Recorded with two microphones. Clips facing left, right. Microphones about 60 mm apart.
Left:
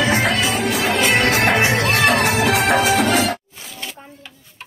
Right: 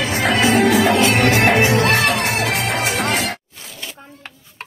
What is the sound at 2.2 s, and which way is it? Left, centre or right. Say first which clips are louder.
Music: left 3 dB; left.